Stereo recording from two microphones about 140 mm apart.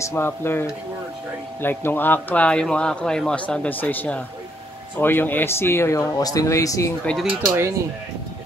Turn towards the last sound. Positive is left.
turn(degrees=0)  # may be behind; listen again after turning